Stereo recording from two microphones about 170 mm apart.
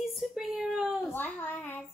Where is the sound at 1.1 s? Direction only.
10° left (ahead or behind).